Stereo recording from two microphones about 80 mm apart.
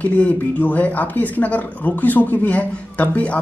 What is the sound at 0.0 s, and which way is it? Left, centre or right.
Speech, centre.